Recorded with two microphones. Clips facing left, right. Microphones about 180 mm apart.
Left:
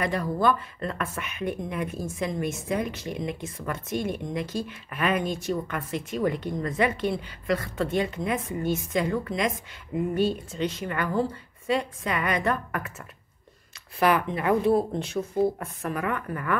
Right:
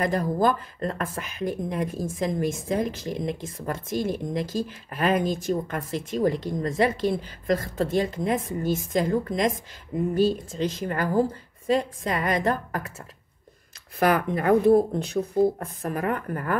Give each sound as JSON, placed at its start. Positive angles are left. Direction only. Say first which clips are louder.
{"t": 0.0, "sound": "speech", "louder": "right 2 dB", "side_deg": -40}
{"t": 9.9, "sound": "speech", "louder": "right 1 dB", "side_deg": 10}
{"t": 10.6, "sound": "speech", "louder": "right 2 dB", "side_deg": -35}
{"t": 13.9, "sound": "speech", "louder": "right 1 dB", "side_deg": -45}